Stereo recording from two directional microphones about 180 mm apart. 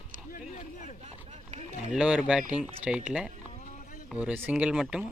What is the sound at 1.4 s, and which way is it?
Run, 35° right (ahead or behind).